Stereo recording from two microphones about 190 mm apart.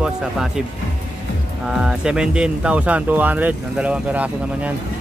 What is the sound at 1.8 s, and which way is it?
Speech, 5° right (ahead or behind).